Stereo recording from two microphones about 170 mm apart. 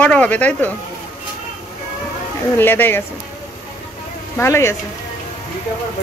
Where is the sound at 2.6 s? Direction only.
10° left (ahead or behind).